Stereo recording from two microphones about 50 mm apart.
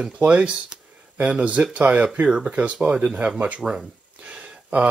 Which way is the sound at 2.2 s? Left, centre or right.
Right.